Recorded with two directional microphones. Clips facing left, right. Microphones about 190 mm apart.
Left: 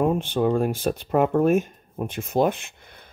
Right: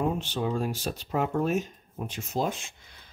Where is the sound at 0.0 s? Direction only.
55° left (ahead or behind).